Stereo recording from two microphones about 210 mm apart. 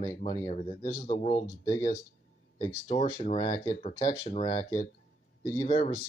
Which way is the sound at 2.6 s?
15° left (ahead or behind).